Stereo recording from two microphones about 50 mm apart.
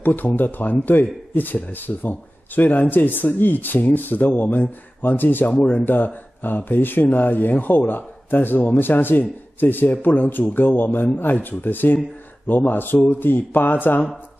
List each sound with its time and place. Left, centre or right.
0.0 s speech: left